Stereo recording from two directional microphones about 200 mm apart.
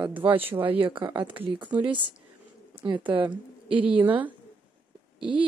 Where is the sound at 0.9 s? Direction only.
25° right (ahead or behind).